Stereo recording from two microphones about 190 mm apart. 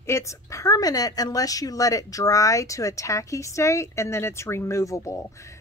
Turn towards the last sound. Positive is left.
turn(degrees=15)  # may be behind; listen again after turning